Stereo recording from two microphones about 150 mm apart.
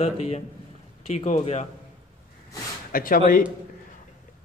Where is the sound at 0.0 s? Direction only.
45° left (ahead or behind).